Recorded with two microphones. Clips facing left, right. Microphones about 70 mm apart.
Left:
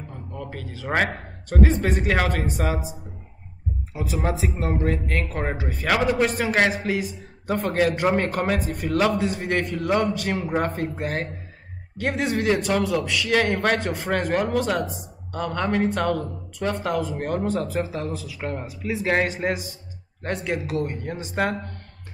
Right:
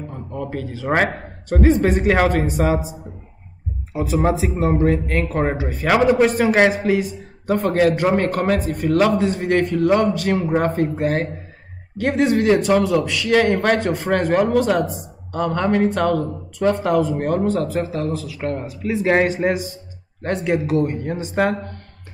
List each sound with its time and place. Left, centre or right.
0.1 s a man's voice: centre
3.9 s a man's voice: centre